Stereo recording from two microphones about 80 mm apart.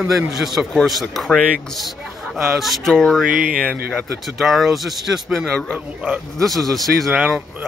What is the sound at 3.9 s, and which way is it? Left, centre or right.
Speech, centre.